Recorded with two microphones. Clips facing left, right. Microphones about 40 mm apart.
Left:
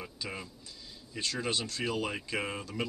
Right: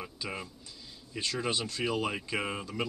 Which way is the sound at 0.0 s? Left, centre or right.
Centre.